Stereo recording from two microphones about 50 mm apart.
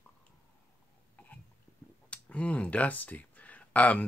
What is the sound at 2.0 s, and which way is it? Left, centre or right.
Speech, left.